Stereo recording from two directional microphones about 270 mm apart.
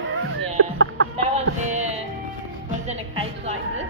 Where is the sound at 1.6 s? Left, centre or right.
Right.